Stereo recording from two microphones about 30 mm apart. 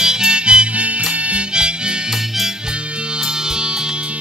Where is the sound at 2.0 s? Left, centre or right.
Centre.